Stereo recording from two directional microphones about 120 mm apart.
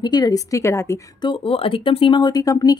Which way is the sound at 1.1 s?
40° left (ahead or behind).